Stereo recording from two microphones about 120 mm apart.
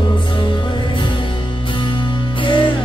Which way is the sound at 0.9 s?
40° left (ahead or behind).